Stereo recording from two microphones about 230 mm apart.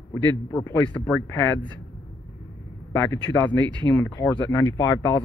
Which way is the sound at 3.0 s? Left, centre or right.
Centre.